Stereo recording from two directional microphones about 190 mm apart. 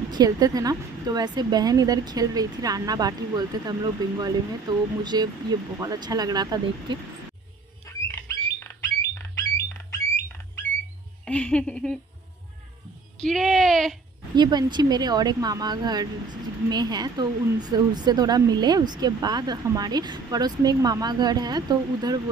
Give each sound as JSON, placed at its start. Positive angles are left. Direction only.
{"t": 0.1, "sound": "speech", "side_deg": -20}
{"t": 7.8, "sound": "rodents", "side_deg": 15}
{"t": 9.8, "sound": "a sound", "side_deg": 15}
{"t": 11.2, "sound": "speech", "side_deg": 5}
{"t": 13.2, "sound": "speech", "side_deg": 0}
{"t": 14.3, "sound": "speech", "side_deg": -20}